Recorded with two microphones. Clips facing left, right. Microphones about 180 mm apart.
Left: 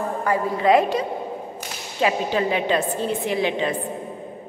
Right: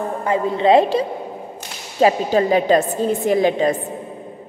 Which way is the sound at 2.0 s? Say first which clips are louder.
Right 6 dB; 40° right (ahead or behind).